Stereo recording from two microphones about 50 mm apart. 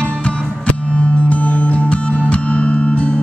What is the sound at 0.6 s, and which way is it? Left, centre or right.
Music, left.